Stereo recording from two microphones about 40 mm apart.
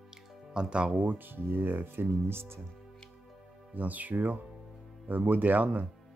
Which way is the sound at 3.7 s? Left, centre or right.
Right.